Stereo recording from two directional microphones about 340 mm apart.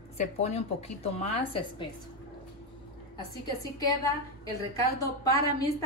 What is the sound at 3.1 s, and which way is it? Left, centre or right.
Speech, centre.